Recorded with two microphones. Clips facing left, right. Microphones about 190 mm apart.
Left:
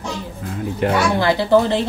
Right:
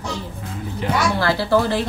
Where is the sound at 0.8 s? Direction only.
60° left (ahead or behind).